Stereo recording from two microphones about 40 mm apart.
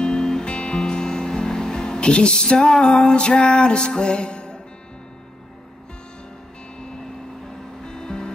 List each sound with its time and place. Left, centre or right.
0.0 s music: centre
7.8 s music: centre